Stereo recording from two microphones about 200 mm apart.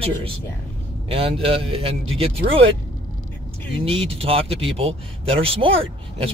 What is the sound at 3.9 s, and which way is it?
Speech, 30° right (ahead or behind).